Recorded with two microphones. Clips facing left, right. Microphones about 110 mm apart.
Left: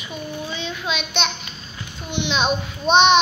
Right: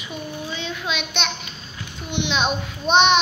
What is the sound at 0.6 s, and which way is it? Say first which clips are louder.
Child singing: even; 5° right (ahead or behind).